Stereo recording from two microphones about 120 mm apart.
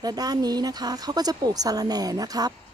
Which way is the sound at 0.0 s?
35° right (ahead or behind).